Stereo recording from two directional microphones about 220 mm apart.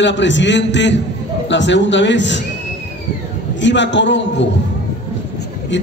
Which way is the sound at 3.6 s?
55° left (ahead or behind).